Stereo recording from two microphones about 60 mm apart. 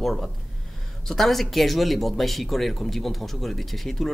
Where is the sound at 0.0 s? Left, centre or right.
Centre.